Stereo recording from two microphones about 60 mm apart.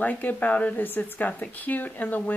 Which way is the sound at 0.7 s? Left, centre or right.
Left.